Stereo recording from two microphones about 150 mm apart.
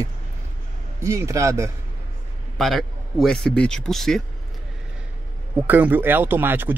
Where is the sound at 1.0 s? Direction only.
20° right (ahead or behind).